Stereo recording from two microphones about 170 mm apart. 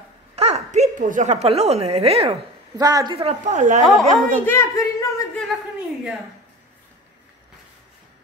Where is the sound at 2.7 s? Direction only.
20° right (ahead or behind).